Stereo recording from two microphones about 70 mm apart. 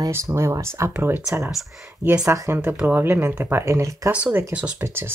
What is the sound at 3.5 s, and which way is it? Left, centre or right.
Speech, right.